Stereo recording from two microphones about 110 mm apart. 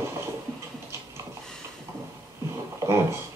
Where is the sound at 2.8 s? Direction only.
25° right (ahead or behind).